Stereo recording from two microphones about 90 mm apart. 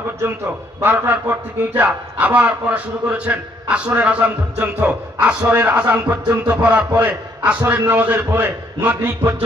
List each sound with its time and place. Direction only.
0.7 s a man's voice: 20° right (ahead or behind)